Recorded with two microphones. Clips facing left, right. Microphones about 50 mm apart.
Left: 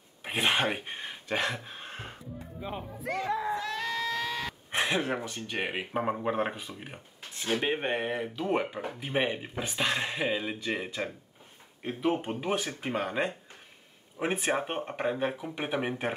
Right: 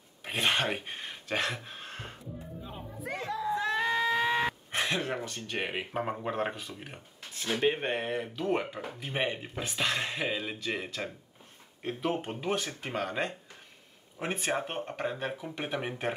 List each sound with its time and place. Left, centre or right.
0.2 s speech: centre
3.3 s a sound: left
3.5 s sheep: right
4.6 s speech: centre